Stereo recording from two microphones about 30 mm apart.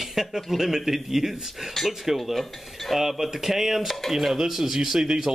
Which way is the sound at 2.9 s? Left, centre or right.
Centre.